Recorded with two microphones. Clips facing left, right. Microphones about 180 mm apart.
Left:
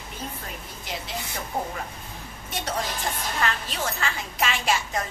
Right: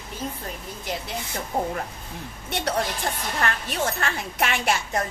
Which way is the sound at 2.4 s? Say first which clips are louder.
Right 4 dB; 65° right (ahead or behind).